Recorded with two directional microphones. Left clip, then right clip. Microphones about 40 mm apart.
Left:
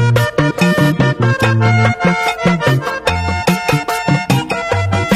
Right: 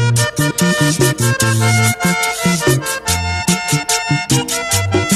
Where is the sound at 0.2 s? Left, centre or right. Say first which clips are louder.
Left 1 dB; right.